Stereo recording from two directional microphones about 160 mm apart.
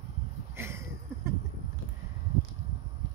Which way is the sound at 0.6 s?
15° right (ahead or behind).